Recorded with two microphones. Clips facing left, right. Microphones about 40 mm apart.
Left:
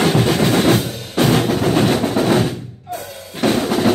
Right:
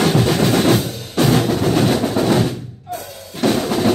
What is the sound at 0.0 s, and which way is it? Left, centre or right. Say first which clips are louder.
Drum: even; centre.